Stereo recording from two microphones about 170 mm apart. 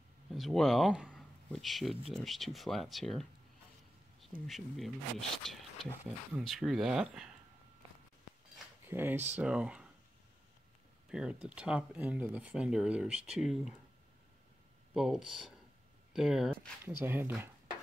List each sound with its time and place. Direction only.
0.3 s speech: centre (ahead or behind)
4.5 s speech: centre (ahead or behind)
8.8 s speech: 15° right (ahead or behind)
11.1 s speech: 5° right (ahead or behind)
15.0 s speech: centre (ahead or behind)